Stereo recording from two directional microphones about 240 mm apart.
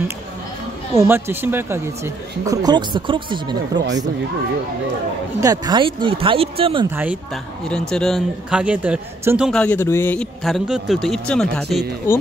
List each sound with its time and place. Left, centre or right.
0.9 s speech: centre
5.4 s speech: centre
7.9 s a man's voice: centre
9.5 s a man's voice: centre